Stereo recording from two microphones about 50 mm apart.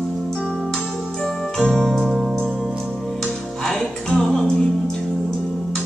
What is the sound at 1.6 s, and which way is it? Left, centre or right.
Organ, centre.